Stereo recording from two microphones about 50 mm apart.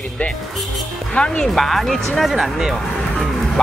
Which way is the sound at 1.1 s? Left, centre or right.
Centre.